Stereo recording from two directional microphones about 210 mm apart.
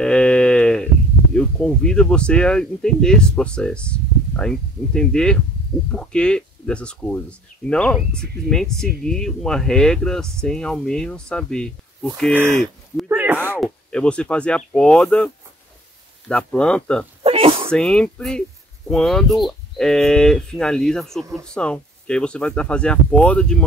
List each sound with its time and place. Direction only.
0.0 s a sound: 5° left (ahead or behind)
1.3 s speech: 5° left (ahead or behind)
13.1 s a sound: 10° right (ahead or behind)
13.8 s speech: 5° left (ahead or behind)
17.2 s sneeze: 30° right (ahead or behind)
17.6 s speech: 5° left (ahead or behind)